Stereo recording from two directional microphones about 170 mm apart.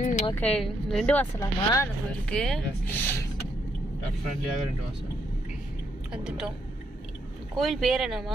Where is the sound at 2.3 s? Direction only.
5° left (ahead or behind).